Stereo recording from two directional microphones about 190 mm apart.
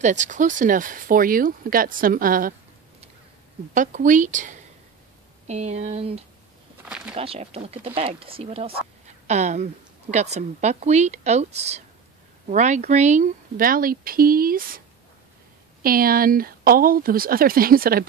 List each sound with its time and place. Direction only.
0.0 s speech: 40° right (ahead or behind)
3.7 s speech: 45° right (ahead or behind)
15.8 s speech: 50° right (ahead or behind)